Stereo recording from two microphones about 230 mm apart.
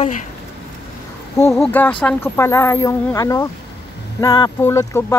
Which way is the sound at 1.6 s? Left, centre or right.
Centre.